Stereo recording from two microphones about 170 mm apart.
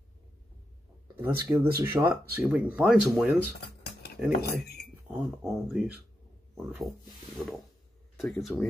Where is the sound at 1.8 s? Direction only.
15° right (ahead or behind).